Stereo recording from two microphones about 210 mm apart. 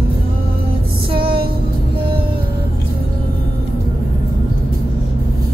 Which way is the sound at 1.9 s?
25° right (ahead or behind).